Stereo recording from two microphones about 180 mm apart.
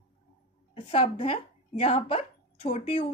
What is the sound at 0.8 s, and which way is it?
Speech, 35° left (ahead or behind).